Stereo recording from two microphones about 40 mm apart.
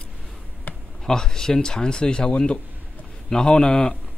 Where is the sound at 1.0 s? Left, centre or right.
Centre.